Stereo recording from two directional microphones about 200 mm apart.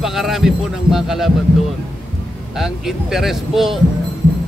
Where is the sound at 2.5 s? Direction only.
Centre (ahead or behind).